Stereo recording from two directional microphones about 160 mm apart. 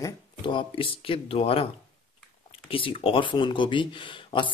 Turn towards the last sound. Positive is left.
turn(degrees=30)  # may be behind; listen again after turning